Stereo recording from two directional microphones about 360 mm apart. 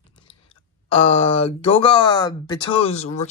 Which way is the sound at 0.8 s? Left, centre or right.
Centre.